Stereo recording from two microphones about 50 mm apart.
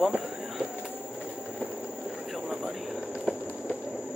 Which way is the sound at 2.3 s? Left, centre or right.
Centre.